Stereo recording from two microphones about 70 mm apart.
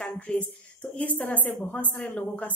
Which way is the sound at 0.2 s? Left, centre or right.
Centre.